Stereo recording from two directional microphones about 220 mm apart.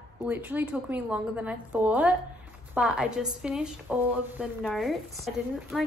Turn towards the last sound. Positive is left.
turn(degrees=0)  # may be behind; listen again after turning